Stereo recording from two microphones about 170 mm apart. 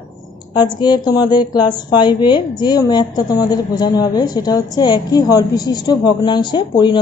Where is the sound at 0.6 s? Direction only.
25° left (ahead or behind).